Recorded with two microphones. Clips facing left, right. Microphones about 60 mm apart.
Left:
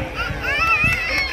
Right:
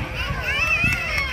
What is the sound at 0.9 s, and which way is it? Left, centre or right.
Run, left.